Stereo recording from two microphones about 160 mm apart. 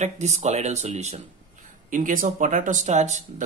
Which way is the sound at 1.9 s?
55° right (ahead or behind).